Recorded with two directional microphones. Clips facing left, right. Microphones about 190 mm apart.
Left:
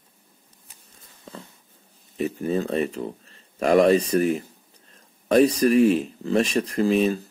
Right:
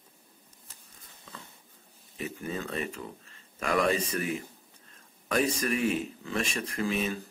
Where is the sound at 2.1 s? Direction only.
35° left (ahead or behind).